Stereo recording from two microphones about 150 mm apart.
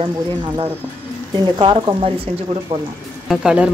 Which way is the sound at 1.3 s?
30° right (ahead or behind).